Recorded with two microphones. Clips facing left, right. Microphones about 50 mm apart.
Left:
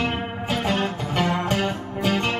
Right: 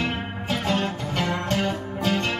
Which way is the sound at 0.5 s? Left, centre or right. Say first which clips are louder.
Left 1 dB; centre.